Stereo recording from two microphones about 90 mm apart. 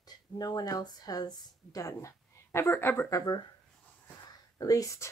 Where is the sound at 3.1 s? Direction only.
40° left (ahead or behind).